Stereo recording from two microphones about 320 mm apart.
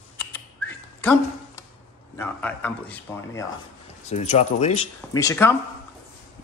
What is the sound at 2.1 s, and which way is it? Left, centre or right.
Speech, centre.